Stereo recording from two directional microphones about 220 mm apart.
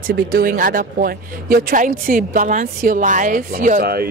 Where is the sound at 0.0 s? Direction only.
40° right (ahead or behind).